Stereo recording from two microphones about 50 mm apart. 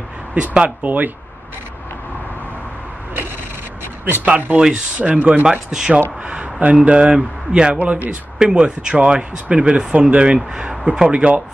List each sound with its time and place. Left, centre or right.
0.3 s speech: right
4.0 s speech: right
4.6 s speech: centre
5.0 s speech: right
7.8 s speech: right
8.4 s speech: centre